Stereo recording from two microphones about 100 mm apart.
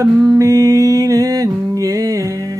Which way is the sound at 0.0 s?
35° right (ahead or behind).